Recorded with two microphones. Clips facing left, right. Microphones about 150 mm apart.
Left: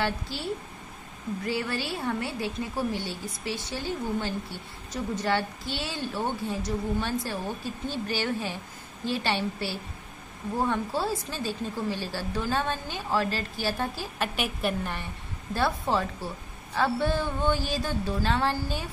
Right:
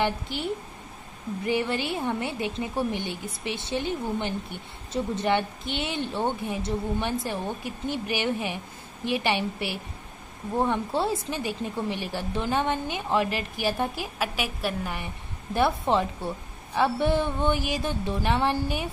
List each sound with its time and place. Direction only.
0.0 s a woman's voice: 20° right (ahead or behind)
14.2 s a woman's voice: 5° right (ahead or behind)
15.5 s a woman's voice: 20° right (ahead or behind)